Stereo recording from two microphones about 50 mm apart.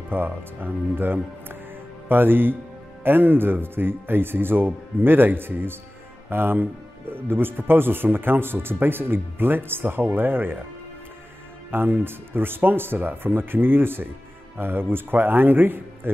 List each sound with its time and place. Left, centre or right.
0.1 s speech: right
11.7 s speech: right